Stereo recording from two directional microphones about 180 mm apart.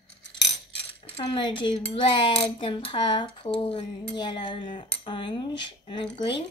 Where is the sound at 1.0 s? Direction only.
30° left (ahead or behind).